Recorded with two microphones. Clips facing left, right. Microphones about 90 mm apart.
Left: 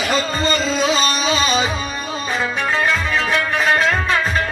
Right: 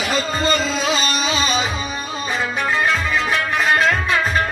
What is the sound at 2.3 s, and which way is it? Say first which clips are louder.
Music: even; centre (ahead or behind).